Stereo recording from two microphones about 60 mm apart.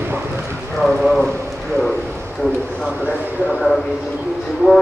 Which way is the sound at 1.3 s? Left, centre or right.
Right.